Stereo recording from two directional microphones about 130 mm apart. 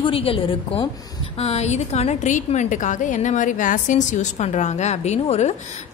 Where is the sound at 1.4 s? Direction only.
55° left (ahead or behind).